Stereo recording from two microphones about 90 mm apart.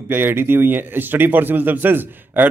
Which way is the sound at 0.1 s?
25° right (ahead or behind).